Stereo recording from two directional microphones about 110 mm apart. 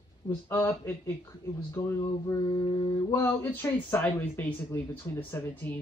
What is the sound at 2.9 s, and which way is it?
Speech, 25° left (ahead or behind).